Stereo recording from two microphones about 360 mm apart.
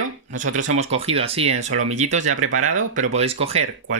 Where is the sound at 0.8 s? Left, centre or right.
Centre.